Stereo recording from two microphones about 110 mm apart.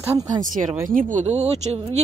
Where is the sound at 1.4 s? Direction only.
75° right (ahead or behind).